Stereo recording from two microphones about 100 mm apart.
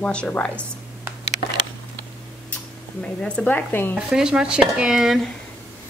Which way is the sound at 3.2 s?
10° left (ahead or behind).